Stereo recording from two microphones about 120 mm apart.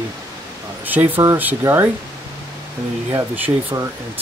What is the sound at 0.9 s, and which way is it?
Speech, 15° right (ahead or behind).